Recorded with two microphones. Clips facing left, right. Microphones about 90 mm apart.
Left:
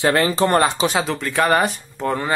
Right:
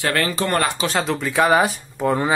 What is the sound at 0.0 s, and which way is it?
Speech, 20° left (ahead or behind).